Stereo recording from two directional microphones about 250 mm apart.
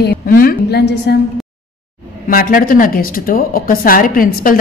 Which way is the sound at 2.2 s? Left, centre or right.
Left.